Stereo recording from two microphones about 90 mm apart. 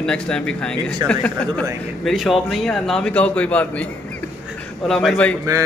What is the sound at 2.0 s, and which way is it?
A man's voice, centre (ahead or behind).